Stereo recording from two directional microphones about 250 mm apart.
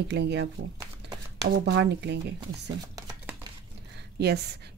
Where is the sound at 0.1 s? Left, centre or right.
Right.